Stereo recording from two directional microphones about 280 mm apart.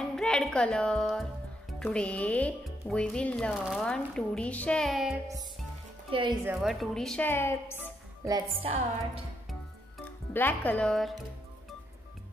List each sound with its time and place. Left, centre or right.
0.1 s a woman's voice: centre
6.1 s a woman's voice: centre
6.5 s speech: centre
8.3 s a woman's voice: centre
9.5 s music: centre